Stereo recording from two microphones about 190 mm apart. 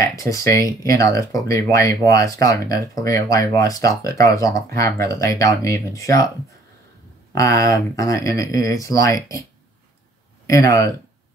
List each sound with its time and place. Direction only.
0.0 s speech: 15° left (ahead or behind)
7.3 s speech: 15° left (ahead or behind)
10.4 s speech: 15° left (ahead or behind)